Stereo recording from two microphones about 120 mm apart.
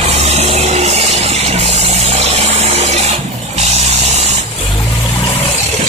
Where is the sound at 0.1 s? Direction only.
60° right (ahead or behind).